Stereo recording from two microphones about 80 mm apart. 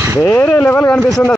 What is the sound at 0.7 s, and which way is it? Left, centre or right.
Speech, centre.